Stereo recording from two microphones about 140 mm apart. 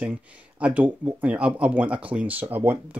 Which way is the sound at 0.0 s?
10° right (ahead or behind).